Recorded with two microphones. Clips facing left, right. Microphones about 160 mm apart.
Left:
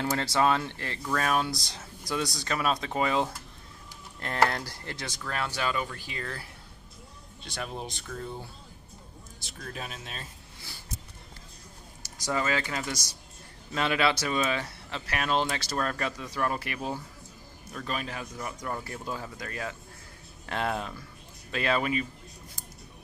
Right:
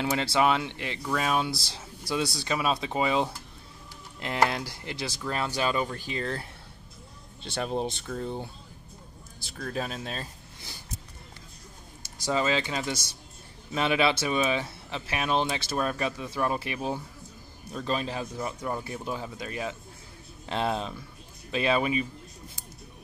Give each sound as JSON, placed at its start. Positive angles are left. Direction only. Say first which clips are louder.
{"t": 0.3, "sound": "speech", "louder": "even", "side_deg": -15}
{"t": 5.3, "sound": "speech", "louder": "right 3 dB", "side_deg": -20}
{"t": 7.4, "sound": "speech", "louder": "right 7 dB", "side_deg": -30}
{"t": 12.0, "sound": "speech", "louder": "right 3 dB", "side_deg": -20}
{"t": 18.7, "sound": "speech", "louder": "right 2 dB", "side_deg": -15}